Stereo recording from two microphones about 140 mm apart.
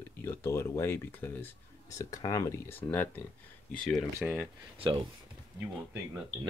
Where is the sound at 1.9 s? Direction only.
25° left (ahead or behind).